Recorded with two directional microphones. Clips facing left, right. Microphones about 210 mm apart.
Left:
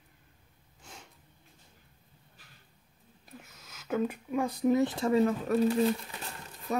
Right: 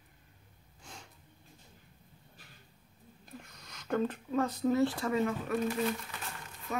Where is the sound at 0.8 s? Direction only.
5° left (ahead or behind).